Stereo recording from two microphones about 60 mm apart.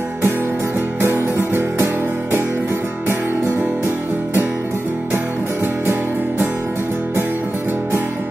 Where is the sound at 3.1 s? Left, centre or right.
Right.